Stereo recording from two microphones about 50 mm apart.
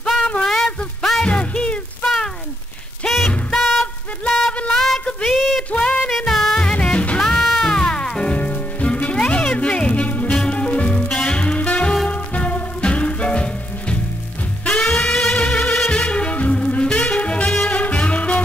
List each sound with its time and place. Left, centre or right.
0.4 s music: centre
1.2 s music: left
3.5 s music: centre
4.3 s a sound: centre
4.7 s a sound: centre
5.6 s a sound: left
6.0 s music: centre
6.6 s music: left
7.2 s music: centre